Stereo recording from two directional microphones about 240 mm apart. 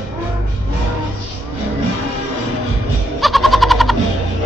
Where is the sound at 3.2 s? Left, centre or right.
Centre.